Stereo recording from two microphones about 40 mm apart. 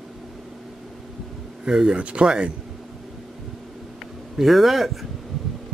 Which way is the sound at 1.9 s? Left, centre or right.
Right.